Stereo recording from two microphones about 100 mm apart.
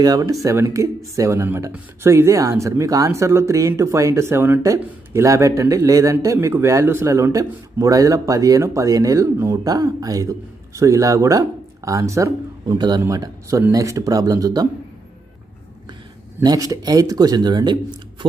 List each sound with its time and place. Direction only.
0.0 s a man's voice: 40° right (ahead or behind)
12.7 s a man's voice: 45° right (ahead or behind)
13.0 s a man's voice: 35° right (ahead or behind)
16.4 s a man's voice: 35° right (ahead or behind)